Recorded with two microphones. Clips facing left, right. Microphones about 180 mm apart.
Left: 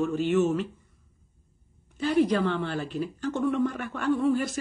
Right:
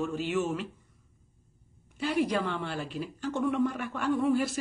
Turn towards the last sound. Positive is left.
turn(degrees=-5)  # may be behind; listen again after turning